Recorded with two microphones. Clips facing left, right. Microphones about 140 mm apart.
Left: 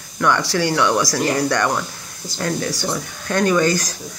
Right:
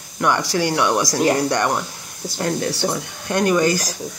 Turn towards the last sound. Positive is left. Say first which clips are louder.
# even
turn(degrees=-15)  # may be behind; listen again after turning